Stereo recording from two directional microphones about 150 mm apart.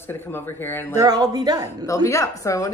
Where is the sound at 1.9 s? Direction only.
20° left (ahead or behind).